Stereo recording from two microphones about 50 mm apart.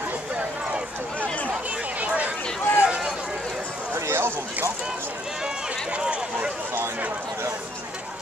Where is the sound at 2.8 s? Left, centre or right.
Centre.